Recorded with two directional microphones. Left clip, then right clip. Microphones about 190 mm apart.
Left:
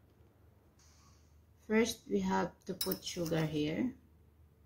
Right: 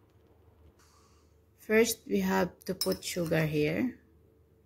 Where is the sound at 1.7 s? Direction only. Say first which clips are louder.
Right 6 dB; 40° right (ahead or behind).